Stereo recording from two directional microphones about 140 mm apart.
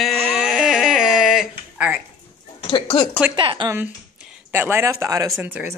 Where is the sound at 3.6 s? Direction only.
15° right (ahead or behind).